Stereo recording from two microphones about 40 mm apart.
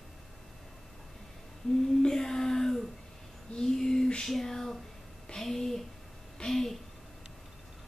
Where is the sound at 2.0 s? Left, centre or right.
Centre.